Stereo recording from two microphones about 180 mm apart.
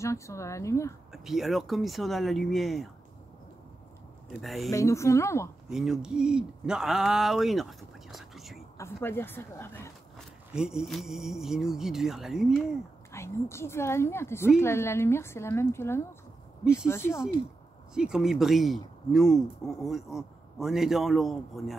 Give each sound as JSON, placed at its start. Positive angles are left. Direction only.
{"t": 0.0, "sound": "a woman's voice", "side_deg": 15}
{"t": 1.1, "sound": "speech", "side_deg": 0}
{"t": 4.4, "sound": "speech", "side_deg": 0}
{"t": 4.6, "sound": "a woman's voice", "side_deg": 15}
{"t": 5.7, "sound": "speech", "side_deg": -5}
{"t": 8.1, "sound": "whispering", "side_deg": 0}
{"t": 8.7, "sound": "a woman's voice", "side_deg": 15}
{"t": 10.1, "sound": "speech", "side_deg": -5}
{"t": 13.1, "sound": "a woman's voice", "side_deg": 15}
{"t": 17.9, "sound": "speech", "side_deg": -5}